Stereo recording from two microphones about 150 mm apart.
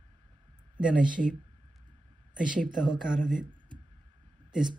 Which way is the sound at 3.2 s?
65° right (ahead or behind).